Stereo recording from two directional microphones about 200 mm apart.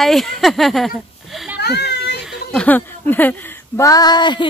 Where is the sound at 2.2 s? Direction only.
Centre (ahead or behind); by 4.4 s 20° left (ahead or behind).